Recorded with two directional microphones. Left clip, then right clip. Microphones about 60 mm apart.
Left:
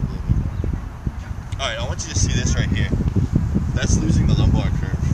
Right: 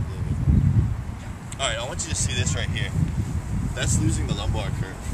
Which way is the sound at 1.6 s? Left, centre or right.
Centre.